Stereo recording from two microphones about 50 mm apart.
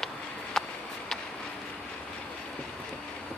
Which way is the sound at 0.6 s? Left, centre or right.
Centre.